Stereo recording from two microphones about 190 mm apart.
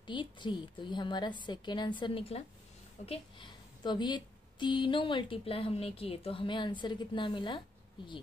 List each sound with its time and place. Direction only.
0.0 s a woman's voice: 25° left (ahead or behind)